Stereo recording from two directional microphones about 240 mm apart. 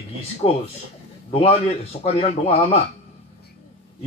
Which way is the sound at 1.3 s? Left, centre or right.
Left.